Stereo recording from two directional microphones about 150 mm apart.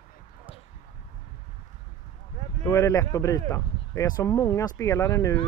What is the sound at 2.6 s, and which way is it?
Speech, 20° left (ahead or behind).